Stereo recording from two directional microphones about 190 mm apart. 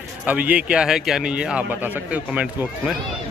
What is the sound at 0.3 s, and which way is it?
A man's voice, 5° right (ahead or behind).